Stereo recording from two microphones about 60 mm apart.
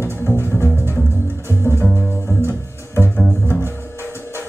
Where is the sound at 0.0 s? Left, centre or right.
Left.